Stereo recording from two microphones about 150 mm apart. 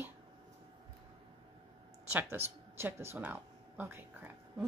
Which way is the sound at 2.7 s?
15° right (ahead or behind).